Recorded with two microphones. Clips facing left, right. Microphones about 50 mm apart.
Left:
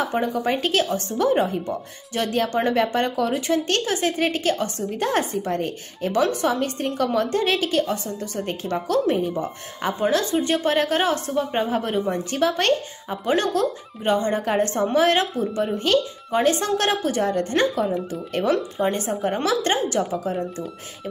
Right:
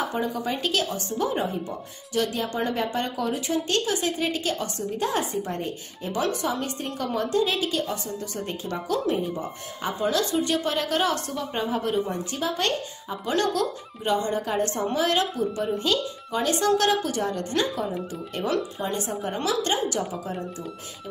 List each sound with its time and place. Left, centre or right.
0.1 s a woman's voice: left
1.1 s speech: left
2.1 s a woman's voice: left
2.4 s a woman's voice: left
2.7 s a woman's voice: left
6.4 s a woman's voice: left
9.3 s a woman's voice: left
11.7 s a woman's voice: left
13.3 s a woman's voice: left
15.6 s a woman's voice: left